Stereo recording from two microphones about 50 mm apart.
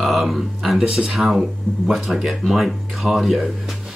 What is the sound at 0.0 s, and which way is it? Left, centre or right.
Speech, centre.